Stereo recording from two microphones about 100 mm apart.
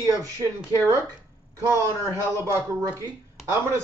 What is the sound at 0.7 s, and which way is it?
Speech, 35° right (ahead or behind).